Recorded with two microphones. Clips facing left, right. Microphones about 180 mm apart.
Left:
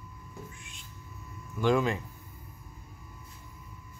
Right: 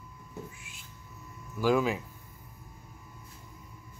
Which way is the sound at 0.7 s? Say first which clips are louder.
Left 1 dB; 5° right (ahead or behind).